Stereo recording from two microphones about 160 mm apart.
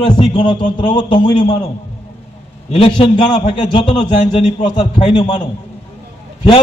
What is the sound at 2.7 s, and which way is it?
A man's voice, 35° left (ahead or behind).